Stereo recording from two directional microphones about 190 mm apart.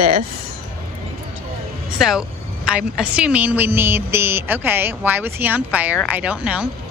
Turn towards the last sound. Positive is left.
turn(degrees=-5)  # may be behind; listen again after turning